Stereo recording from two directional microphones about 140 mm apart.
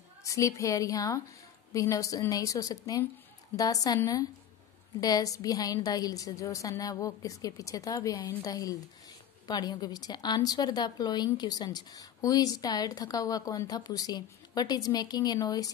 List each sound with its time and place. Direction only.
0.2 s a woman's voice: 25° left (ahead or behind)